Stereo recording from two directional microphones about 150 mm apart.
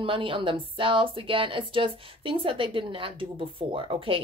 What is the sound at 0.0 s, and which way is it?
Speech, 35° right (ahead or behind).